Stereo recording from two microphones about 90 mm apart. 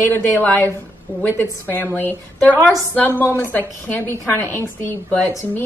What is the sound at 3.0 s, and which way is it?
A woman's voice, 25° left (ahead or behind).